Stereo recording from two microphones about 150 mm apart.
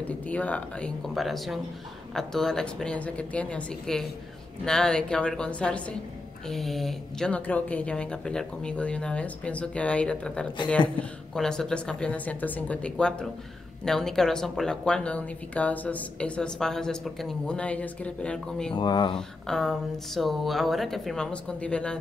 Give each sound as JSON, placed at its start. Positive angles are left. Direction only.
{"t": 0.0, "sound": "speech", "side_deg": 10}
{"t": 18.8, "sound": "speech", "side_deg": 30}
{"t": 19.1, "sound": "speech", "side_deg": 5}